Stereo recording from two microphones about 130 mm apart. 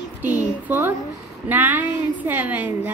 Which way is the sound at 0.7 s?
15° right (ahead or behind).